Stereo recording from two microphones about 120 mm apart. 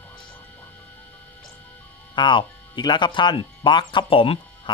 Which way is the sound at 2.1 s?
40° left (ahead or behind).